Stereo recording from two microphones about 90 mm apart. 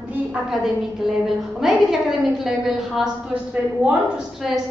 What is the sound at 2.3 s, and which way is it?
Speech, 5° right (ahead or behind).